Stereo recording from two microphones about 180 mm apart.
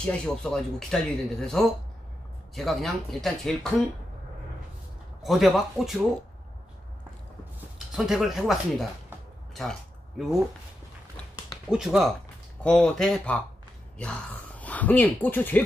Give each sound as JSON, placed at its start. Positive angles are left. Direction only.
{"t": 0.0, "sound": "speech", "side_deg": 5}
{"t": 5.2, "sound": "speech", "side_deg": 0}
{"t": 7.9, "sound": "speech", "side_deg": 0}
{"t": 11.7, "sound": "speech", "side_deg": -5}